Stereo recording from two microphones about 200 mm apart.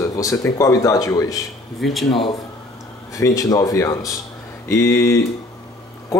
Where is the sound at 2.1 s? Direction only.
25° left (ahead or behind).